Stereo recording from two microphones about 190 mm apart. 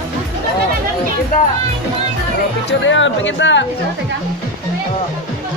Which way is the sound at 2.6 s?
75° left (ahead or behind).